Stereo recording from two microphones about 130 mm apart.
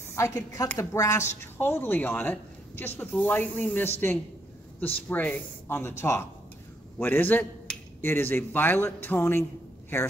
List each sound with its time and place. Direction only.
0.1 s a woman's voice: 25° left (ahead or behind)